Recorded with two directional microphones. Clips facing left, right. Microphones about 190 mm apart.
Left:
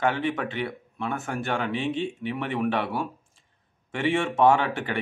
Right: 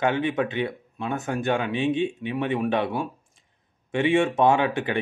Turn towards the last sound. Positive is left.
turn(degrees=-15)  # may be behind; listen again after turning